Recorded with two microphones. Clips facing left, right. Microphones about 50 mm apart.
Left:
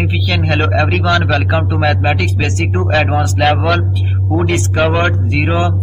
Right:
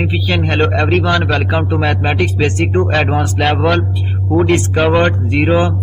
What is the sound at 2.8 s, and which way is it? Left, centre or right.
A man's voice, centre.